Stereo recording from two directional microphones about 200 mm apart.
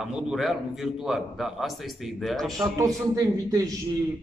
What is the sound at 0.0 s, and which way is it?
A man's voice, centre (ahead or behind).